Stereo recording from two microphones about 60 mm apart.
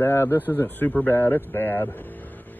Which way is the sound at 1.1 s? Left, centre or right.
Left.